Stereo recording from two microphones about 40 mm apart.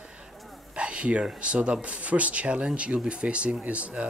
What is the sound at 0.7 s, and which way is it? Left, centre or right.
Speech, right.